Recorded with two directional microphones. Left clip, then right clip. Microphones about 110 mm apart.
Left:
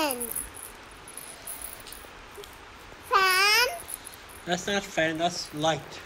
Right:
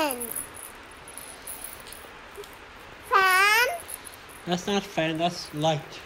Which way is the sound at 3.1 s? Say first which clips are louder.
Right 2 dB; 25° right (ahead or behind).